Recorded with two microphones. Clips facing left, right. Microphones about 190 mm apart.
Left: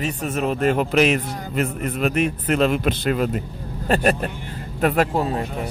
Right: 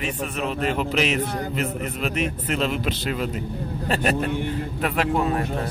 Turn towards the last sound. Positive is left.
turn(degrees=35)  # may be behind; listen again after turning